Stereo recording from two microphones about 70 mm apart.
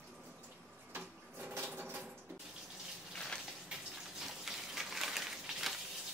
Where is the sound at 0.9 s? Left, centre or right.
Right.